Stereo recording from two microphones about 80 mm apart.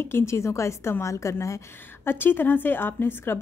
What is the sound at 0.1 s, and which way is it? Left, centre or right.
A woman's voice, left.